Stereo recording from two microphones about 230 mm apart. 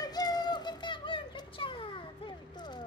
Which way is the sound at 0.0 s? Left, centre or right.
Centre.